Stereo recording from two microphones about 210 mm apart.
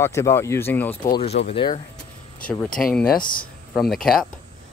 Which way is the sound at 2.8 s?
5° left (ahead or behind).